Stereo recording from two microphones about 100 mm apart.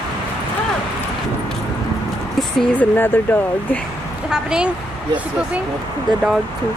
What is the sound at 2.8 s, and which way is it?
Speech, 20° left (ahead or behind).